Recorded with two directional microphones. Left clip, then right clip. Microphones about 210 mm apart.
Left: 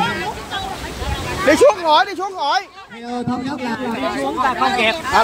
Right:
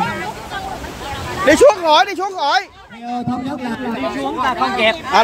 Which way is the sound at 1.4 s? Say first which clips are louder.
Right 2 dB; 15° right (ahead or behind).